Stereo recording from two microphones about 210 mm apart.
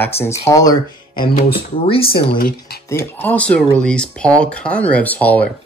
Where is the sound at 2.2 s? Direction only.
45° left (ahead or behind).